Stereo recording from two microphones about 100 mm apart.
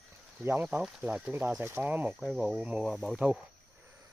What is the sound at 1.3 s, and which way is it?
Speech, 25° right (ahead or behind).